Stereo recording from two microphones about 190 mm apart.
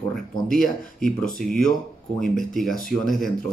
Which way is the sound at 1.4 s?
45° right (ahead or behind).